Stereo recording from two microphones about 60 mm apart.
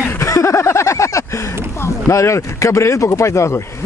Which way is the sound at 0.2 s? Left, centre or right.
Left.